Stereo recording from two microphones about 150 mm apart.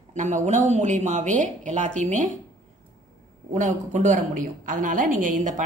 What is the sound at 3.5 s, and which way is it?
A woman's voice, 55° right (ahead or behind).